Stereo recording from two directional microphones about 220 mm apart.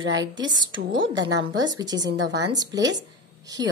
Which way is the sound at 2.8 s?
55° right (ahead or behind).